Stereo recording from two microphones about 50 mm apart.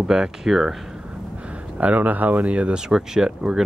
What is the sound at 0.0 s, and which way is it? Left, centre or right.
Speech, centre.